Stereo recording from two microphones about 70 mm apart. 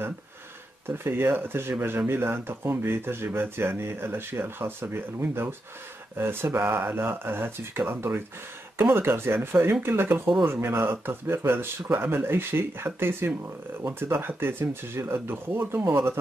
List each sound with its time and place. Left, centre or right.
0.8 s speech: right